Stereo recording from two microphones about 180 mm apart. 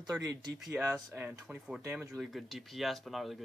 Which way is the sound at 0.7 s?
10° right (ahead or behind).